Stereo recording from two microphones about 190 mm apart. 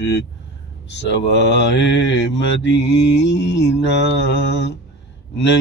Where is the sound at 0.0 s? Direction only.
65° left (ahead or behind).